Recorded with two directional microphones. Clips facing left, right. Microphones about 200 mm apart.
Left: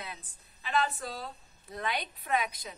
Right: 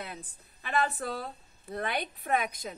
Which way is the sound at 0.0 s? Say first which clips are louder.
Right 3 dB; 50° right (ahead or behind).